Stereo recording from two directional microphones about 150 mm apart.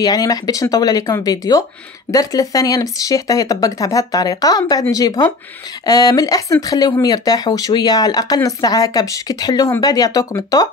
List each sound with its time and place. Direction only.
0.0 s speech: 25° left (ahead or behind)